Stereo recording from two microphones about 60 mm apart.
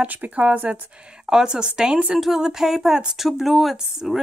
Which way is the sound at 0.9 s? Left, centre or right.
Centre.